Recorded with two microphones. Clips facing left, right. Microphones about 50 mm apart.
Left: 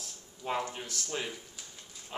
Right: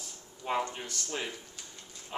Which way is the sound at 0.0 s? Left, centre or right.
Centre.